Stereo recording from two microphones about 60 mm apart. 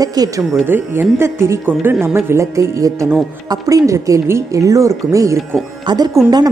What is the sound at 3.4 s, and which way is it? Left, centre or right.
A woman's voice, right.